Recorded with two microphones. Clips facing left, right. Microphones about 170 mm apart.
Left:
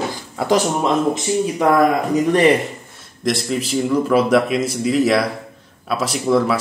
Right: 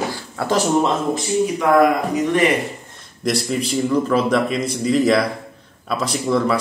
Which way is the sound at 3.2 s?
Centre (ahead or behind).